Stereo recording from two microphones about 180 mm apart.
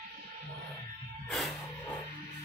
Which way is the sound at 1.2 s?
Centre (ahead or behind).